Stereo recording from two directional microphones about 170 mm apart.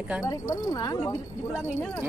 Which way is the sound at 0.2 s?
20° left (ahead or behind).